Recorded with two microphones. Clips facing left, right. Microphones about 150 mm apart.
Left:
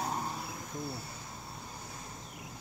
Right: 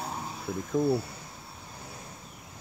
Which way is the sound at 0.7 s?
60° right (ahead or behind).